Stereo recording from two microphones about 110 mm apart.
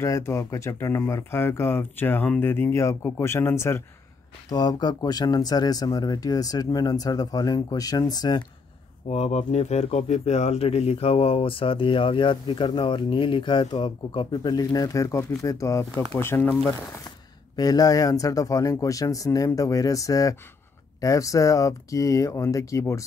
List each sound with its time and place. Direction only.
0.0 s speech: 25° left (ahead or behind)
4.5 s speech: 35° left (ahead or behind)
9.1 s speech: 75° left (ahead or behind); by 16.4 s 20° left (ahead or behind)
17.6 s speech: 35° left (ahead or behind)